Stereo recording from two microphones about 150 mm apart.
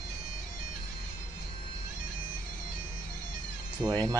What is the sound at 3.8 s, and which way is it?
Music, 5° left (ahead or behind).